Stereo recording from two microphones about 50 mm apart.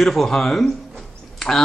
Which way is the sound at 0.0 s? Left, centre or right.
Centre.